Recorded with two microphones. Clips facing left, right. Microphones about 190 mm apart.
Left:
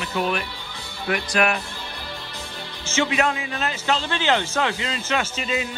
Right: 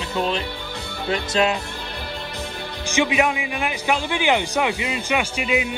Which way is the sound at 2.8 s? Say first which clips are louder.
Right 2 dB; 15° right (ahead or behind).